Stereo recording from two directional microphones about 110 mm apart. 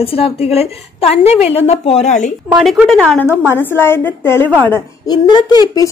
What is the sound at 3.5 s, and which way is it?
A woman's voice, 20° left (ahead or behind).